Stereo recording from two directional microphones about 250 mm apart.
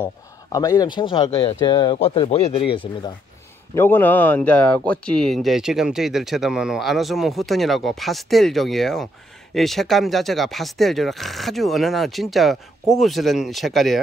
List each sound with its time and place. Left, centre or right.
0.0 s speech: centre
3.7 s speech: centre